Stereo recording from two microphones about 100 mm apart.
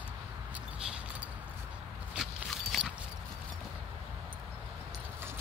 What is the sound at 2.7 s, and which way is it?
Clip-clop, centre (ahead or behind).